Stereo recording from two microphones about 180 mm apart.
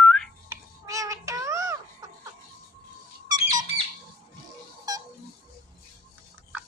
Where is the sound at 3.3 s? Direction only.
20° right (ahead or behind).